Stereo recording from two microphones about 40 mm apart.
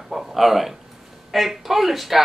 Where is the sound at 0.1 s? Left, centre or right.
Centre.